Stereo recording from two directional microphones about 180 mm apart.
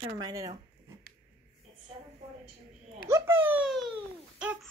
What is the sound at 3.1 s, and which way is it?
Babbling, 15° right (ahead or behind).